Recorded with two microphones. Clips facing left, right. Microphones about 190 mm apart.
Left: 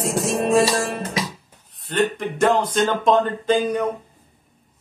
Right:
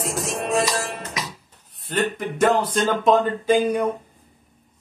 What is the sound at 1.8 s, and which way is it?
Music, 5° right (ahead or behind).